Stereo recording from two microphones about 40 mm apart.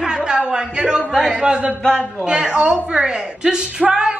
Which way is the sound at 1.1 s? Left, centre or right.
Centre.